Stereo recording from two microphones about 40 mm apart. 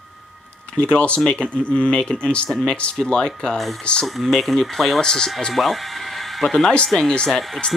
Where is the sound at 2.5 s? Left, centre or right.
Centre.